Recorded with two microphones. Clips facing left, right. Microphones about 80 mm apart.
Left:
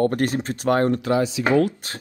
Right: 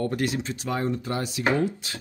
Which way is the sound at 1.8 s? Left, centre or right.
Left.